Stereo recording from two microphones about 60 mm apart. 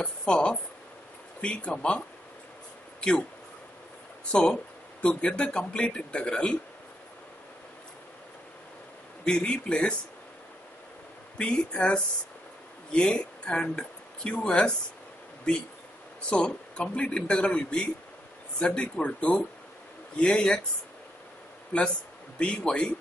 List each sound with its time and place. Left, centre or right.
0.0 s speech: centre
4.3 s speech: centre
9.2 s speech: centre
11.3 s speech: centre
16.3 s speech: centre
22.4 s speech: centre